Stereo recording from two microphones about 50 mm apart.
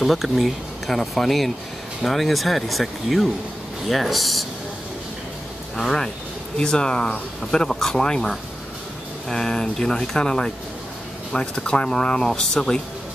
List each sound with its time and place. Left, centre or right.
0.0 s speech: centre
5.8 s speech: centre
9.3 s speech: centre